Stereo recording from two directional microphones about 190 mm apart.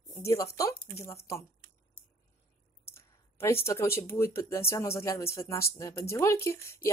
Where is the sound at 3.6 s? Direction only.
15° left (ahead or behind).